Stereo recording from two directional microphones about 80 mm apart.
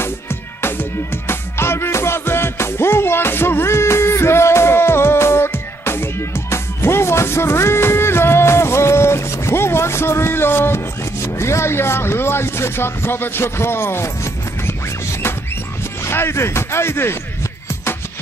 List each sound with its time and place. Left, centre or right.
0.0 s music: left
11.2 s a sound: left
16.0 s music: left